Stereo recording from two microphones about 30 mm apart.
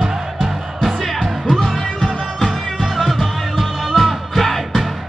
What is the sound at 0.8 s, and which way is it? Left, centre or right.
Music, centre.